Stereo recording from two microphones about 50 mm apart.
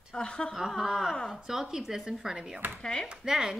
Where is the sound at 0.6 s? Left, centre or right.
Centre.